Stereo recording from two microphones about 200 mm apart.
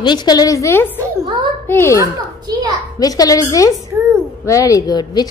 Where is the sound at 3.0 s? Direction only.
20° left (ahead or behind).